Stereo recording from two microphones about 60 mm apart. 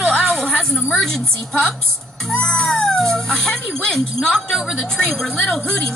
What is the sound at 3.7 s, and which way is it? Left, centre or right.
A child's voice, centre.